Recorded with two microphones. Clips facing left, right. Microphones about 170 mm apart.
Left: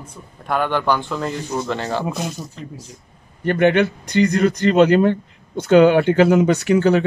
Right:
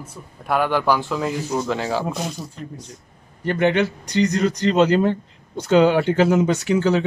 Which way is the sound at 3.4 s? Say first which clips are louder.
Left 3 dB; 60° left (ahead or behind).